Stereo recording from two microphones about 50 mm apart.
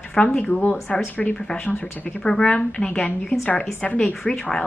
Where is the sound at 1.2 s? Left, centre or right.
Centre.